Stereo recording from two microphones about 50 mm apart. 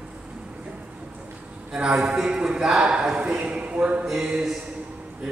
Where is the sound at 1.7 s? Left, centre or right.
Centre.